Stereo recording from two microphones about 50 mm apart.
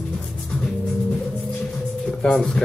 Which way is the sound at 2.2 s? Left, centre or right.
Centre.